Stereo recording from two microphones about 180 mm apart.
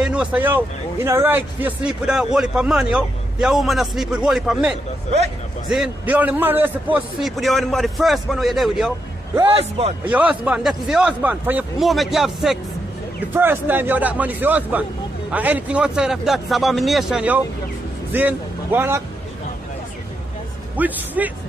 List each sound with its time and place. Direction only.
0.0 s speech: 5° right (ahead or behind)
9.5 s a man's voice: 35° right (ahead or behind)
10.0 s speech: 5° right (ahead or behind)
13.3 s a man's voice: 10° right (ahead or behind)
20.7 s a man's voice: 10° right (ahead or behind)